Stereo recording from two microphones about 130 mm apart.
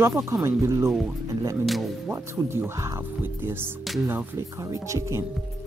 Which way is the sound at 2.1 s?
20° right (ahead or behind).